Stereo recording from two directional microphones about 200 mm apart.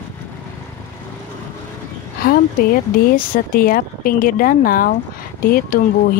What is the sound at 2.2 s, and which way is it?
Speech, 50° left (ahead or behind).